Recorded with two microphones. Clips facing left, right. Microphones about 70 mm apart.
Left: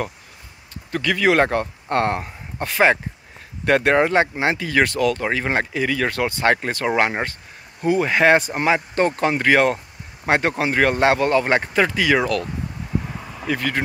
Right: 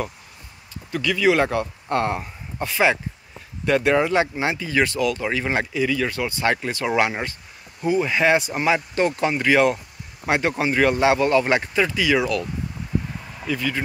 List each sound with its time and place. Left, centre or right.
0.9 s speech: left
11.7 s speech: left
13.1 s vehicle: centre
13.5 s speech: left